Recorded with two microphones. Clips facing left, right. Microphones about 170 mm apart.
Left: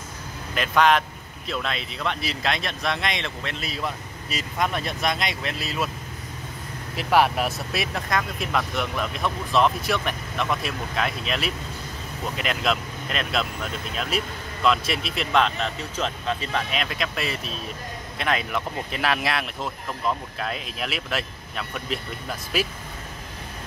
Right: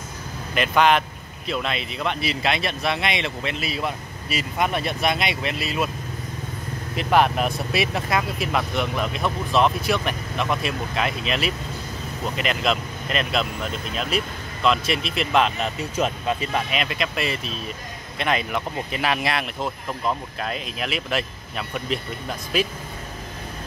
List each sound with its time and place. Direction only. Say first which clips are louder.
0.6 s speech: right 1 dB; centre (ahead or behind)
7.0 s speech: right 1 dB; 5° left (ahead or behind)